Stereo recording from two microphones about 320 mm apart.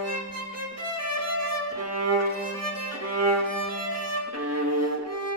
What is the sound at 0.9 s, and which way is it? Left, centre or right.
Violin, right.